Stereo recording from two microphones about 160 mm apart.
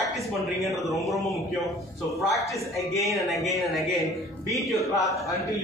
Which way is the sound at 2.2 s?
Centre (ahead or behind).